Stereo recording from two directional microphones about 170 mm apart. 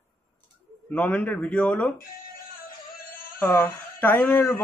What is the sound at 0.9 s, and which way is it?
Speech, 10° left (ahead or behind).